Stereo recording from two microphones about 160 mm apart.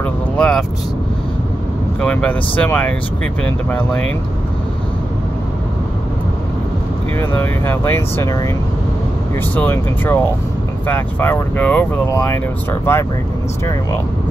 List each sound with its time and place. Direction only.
0.0 s vehicle: 5° left (ahead or behind)
2.0 s speech: 5° left (ahead or behind)
7.2 s speech: 15° left (ahead or behind)
9.6 s speech: 15° left (ahead or behind)